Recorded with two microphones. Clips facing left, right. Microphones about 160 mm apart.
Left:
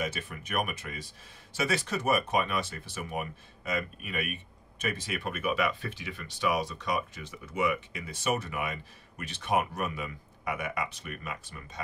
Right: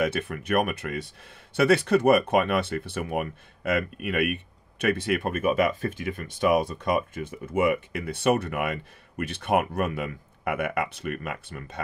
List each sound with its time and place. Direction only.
0.0 s speech: 65° right (ahead or behind)